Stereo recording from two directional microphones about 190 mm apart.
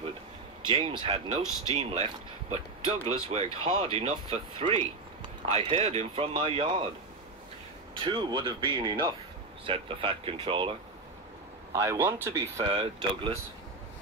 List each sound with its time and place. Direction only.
0.7 s speech: 25° right (ahead or behind)
7.9 s speech: 25° right (ahead or behind)
11.7 s speech: 15° right (ahead or behind)
12.6 s speech: 25° right (ahead or behind)